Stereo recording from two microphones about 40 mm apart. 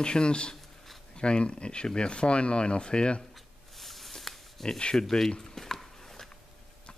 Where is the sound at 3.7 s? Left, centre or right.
Centre.